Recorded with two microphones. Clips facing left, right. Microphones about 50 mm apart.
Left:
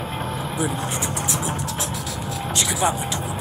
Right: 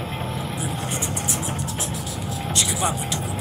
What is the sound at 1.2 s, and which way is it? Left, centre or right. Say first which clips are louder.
Music: left 2 dB; left.